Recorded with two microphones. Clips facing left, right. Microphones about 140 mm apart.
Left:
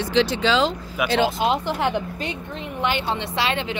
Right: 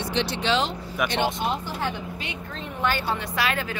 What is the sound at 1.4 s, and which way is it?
Speech, 90° left.